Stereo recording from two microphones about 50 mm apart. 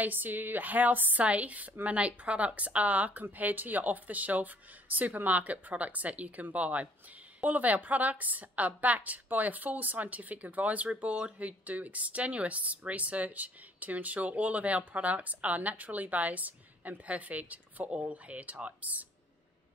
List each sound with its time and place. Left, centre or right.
0.0 s a woman's voice: right